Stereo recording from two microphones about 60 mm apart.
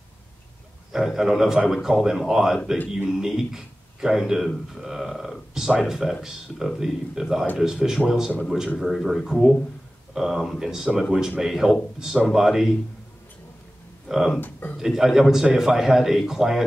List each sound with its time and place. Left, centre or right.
0.9 s speech: centre
14.0 s speech: centre
14.4 s speech: left
14.8 s speech: centre